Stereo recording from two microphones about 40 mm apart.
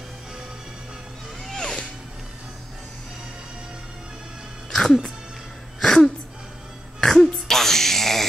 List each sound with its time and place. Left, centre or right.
1.4 s music: centre
4.6 s music: centre
5.8 s a sound: centre